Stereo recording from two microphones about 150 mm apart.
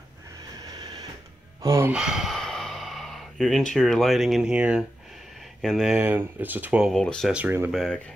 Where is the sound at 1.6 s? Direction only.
20° right (ahead or behind).